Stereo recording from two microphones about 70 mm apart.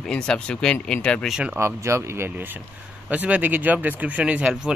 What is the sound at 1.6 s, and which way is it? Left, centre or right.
Speech, right.